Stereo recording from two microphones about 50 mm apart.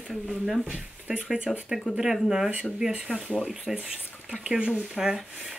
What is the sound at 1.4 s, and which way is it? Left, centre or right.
Speech, right.